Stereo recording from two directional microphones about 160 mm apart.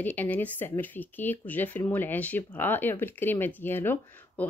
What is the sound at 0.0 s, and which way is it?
Speech, 10° left (ahead or behind).